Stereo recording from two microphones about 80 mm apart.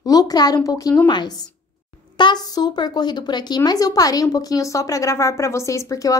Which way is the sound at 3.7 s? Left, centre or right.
Left.